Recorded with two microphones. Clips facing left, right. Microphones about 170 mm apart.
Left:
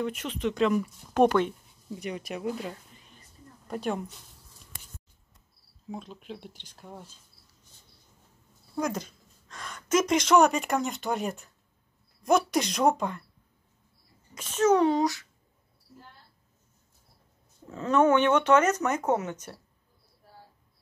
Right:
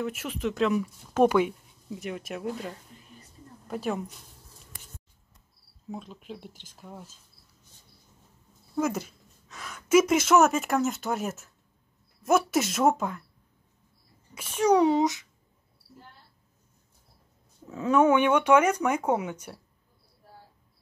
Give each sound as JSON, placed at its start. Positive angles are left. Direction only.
{"t": 0.0, "sound": "speech", "side_deg": -5}
{"t": 5.9, "sound": "speech", "side_deg": 0}
{"t": 8.7, "sound": "speech", "side_deg": -5}
{"t": 14.3, "sound": "a child's voice", "side_deg": -10}
{"t": 17.6, "sound": "speech", "side_deg": -10}